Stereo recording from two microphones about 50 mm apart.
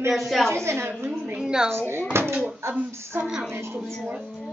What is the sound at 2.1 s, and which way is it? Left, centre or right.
Speech, right.